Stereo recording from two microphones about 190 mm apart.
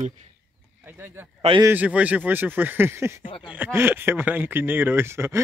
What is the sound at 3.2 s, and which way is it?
Speech, 25° left (ahead or behind).